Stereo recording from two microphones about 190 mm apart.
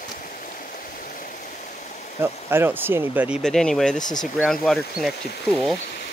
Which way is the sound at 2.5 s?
10° right (ahead or behind).